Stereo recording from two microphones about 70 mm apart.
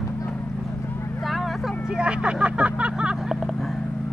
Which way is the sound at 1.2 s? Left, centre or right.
Centre.